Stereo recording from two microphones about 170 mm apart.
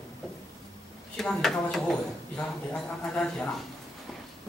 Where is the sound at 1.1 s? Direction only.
Centre (ahead or behind).